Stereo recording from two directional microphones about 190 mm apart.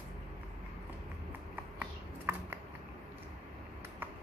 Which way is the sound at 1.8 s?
10° right (ahead or behind).